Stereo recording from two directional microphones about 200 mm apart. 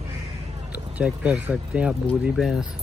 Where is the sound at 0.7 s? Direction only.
5° right (ahead or behind).